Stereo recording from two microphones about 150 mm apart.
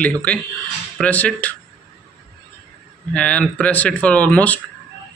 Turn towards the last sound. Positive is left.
turn(degrees=10)  # may be behind; listen again after turning